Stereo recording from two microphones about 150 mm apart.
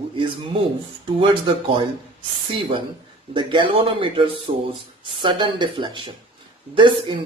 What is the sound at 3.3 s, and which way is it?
Speech, 30° right (ahead or behind).